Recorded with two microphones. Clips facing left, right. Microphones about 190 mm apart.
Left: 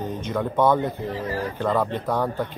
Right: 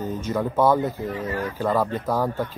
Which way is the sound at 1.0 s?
30° left (ahead or behind).